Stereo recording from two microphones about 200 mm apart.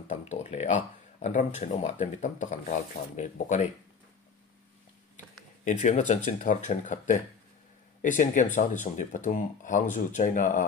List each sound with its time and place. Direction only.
0.1 s speech: 35° left (ahead or behind)
5.7 s speech: 35° left (ahead or behind)